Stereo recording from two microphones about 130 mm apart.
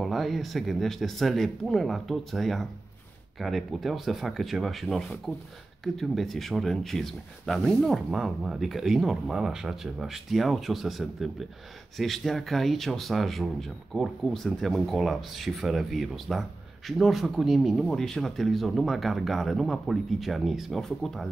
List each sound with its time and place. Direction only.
0.0 s speech: centre (ahead or behind)